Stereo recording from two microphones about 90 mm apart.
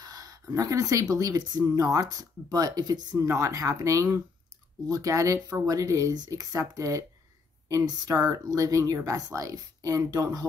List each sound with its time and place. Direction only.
0.0 s speech: 45° right (ahead or behind)
3.3 s speech: 35° right (ahead or behind)